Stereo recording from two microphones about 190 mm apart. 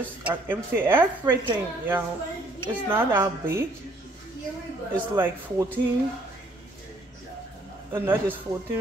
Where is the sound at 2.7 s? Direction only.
10° right (ahead or behind).